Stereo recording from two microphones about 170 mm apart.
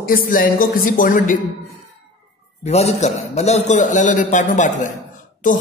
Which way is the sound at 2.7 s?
40° left (ahead or behind).